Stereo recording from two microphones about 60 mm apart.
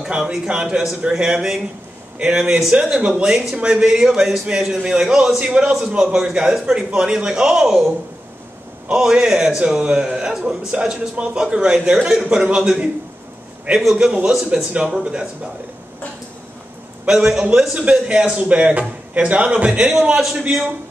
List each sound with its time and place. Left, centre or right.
0.0 s a man's voice: centre
17.0 s a man's voice: centre